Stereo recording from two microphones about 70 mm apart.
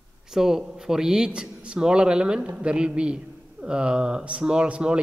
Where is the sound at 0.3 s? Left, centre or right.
Centre.